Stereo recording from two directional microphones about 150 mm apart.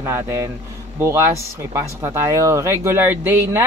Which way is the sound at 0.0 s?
20° right (ahead or behind).